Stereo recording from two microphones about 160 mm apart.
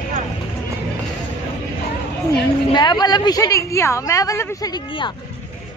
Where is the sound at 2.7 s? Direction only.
25° left (ahead or behind).